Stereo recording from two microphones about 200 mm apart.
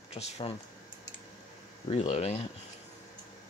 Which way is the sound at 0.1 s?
35° left (ahead or behind).